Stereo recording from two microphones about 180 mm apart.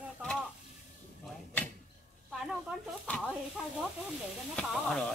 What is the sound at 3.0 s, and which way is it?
Speech, 5° left (ahead or behind).